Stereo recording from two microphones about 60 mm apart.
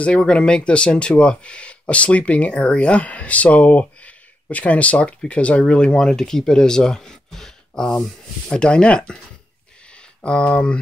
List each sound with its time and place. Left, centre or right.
0.0 s speech: centre
10.2 s speech: centre